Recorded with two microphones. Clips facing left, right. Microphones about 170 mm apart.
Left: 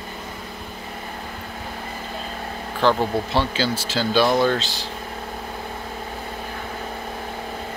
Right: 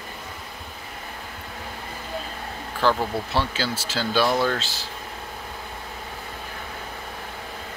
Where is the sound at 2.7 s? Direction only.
5° right (ahead or behind).